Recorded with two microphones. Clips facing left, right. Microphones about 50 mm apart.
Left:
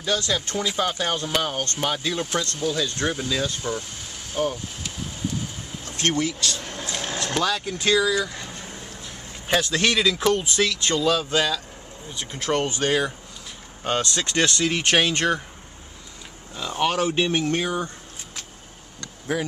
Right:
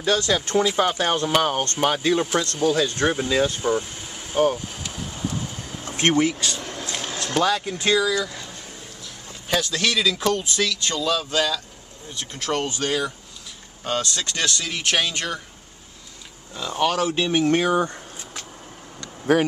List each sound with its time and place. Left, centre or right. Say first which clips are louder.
0.0 s speech: right 3 dB; right
5.9 s a sound: right 4 dB; centre
7.3 s speech: right 4 dB; centre
8.1 s speech: even; centre
10.4 s speech: left 1 dB; centre
10.7 s speech: left 2 dB; left
16.5 s speech: right 1 dB; centre
16.8 s speech: even; centre
17.5 s a sound: right 5 dB; right
19.3 s speech: right 8 dB; right